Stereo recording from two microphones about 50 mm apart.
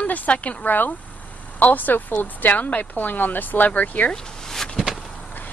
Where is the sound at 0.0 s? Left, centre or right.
Left.